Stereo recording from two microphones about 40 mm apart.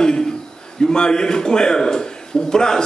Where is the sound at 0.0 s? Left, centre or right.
Centre.